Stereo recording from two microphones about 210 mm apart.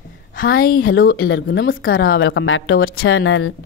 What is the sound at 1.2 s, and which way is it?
Speech, 60° left (ahead or behind).